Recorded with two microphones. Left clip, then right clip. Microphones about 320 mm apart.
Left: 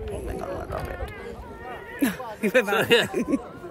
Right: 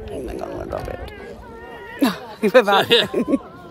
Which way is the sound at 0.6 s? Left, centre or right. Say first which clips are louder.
Right 4 dB; right.